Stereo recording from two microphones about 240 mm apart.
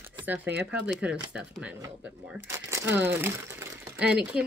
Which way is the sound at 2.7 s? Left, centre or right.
Centre.